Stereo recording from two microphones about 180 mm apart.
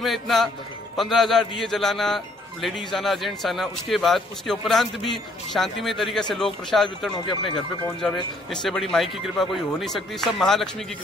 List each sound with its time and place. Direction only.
0.0 s a man's voice: centre (ahead or behind)